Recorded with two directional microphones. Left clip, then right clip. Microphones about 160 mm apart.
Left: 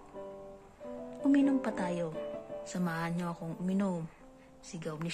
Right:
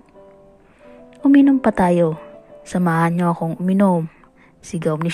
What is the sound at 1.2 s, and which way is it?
A woman's voice, 35° right (ahead or behind).